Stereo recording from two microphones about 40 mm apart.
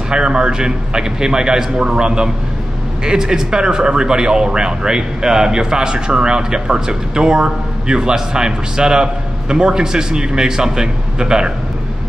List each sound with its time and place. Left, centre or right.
0.1 s speech: right